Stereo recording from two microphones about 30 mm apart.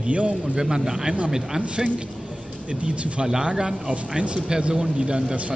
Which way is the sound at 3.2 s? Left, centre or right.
Right.